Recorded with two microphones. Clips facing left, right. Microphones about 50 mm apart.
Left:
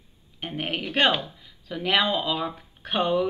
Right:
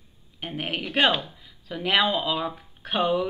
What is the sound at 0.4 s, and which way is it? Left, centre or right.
Speech, centre.